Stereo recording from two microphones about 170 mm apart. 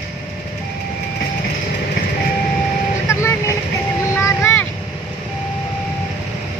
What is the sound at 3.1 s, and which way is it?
Vehicle, 15° left (ahead or behind).